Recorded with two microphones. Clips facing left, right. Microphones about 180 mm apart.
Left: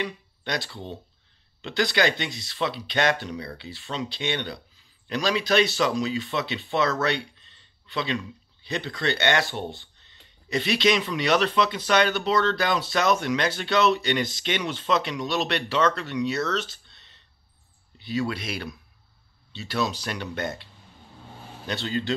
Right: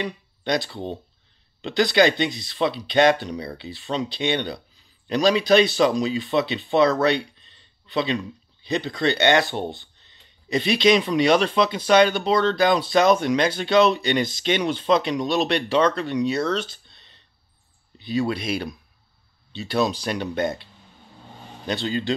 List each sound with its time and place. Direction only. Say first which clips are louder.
0.0 s speech: right 3 dB; 20° right (ahead or behind)
7.9 s speech: right 5 dB; 20° right (ahead or behind)
13.7 s speech: right 4 dB; 30° right (ahead or behind)
15.2 s speech: right 5 dB; 15° right (ahead or behind)
17.9 s a sound: right 4 dB; 20° right (ahead or behind)
18.3 s speech: right 6 dB; 15° right (ahead or behind)
21.6 s speech: right 3 dB; 20° right (ahead or behind)